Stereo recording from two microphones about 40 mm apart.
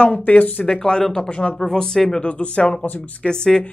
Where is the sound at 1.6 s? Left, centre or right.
Centre.